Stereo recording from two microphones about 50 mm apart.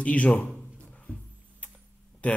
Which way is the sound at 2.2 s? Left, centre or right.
Left.